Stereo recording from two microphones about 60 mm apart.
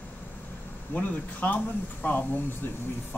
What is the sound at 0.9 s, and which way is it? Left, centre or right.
Speech, left.